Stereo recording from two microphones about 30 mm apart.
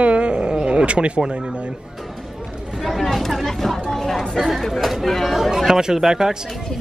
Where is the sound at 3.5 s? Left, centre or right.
Centre.